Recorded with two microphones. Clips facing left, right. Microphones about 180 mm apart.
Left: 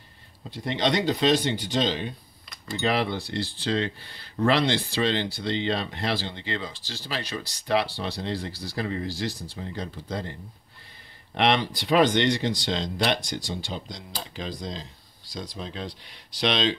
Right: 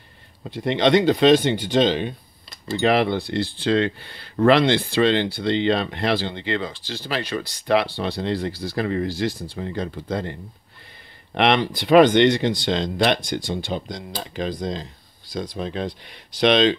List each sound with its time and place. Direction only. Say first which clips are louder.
0.4 s speech: right 6 dB; 60° right (ahead or behind)
11.3 s speech: right 4 dB; 65° right (ahead or behind)